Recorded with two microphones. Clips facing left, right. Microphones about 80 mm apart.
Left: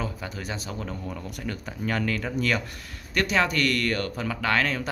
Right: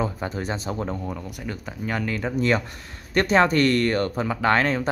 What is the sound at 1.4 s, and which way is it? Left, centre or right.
Speech, centre.